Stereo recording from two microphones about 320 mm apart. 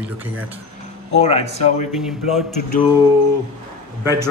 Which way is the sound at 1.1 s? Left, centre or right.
Centre.